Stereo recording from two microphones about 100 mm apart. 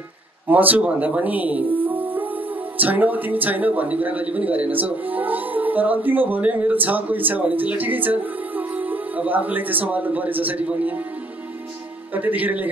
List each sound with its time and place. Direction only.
0.5 s speech: 15° right (ahead or behind)
12.1 s speech: 15° right (ahead or behind)